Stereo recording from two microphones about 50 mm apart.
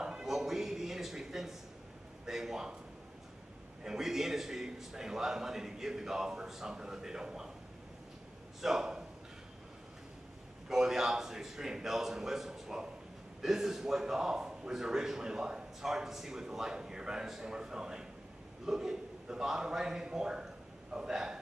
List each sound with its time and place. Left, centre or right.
0.0 s music: centre
0.3 s a sound: centre
2.2 s speech: centre
3.8 s a man's voice: centre
8.5 s speech: centre
10.7 s a man's voice: centre